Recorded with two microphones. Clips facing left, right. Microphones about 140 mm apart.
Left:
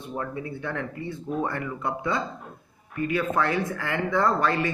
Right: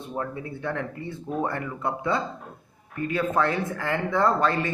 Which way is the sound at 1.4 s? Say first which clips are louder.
Right 2 dB; 30° right (ahead or behind).